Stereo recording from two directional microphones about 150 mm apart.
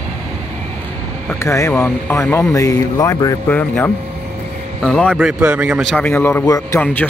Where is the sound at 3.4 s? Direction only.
10° left (ahead or behind).